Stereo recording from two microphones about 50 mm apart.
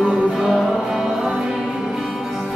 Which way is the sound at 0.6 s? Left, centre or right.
Centre.